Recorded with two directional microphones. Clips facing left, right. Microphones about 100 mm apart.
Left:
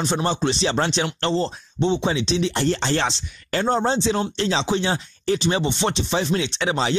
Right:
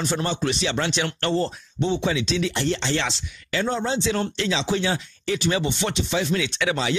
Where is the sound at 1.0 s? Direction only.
20° left (ahead or behind).